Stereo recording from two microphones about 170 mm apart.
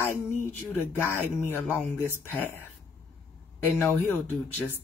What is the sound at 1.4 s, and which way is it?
Speech, 15° left (ahead or behind).